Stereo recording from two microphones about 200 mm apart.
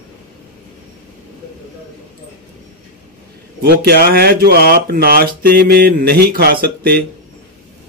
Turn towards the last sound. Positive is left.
turn(degrees=-50)  # may be behind; listen again after turning